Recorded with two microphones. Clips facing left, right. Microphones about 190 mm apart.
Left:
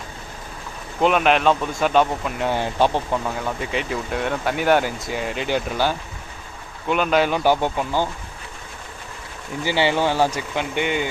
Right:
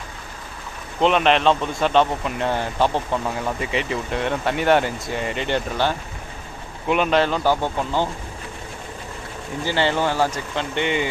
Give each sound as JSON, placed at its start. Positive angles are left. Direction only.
{"t": 1.0, "sound": "speech", "side_deg": 5}
{"t": 2.5, "sound": "speech", "side_deg": 15}
{"t": 3.1, "sound": "speech", "side_deg": 0}
{"t": 9.7, "sound": "speech", "side_deg": 10}